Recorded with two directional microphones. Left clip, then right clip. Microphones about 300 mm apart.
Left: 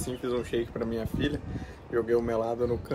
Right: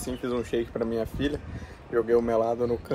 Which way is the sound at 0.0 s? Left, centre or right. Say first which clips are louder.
Right 1 dB; centre.